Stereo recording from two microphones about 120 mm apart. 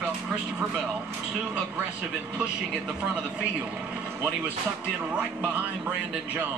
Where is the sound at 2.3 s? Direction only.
5° right (ahead or behind).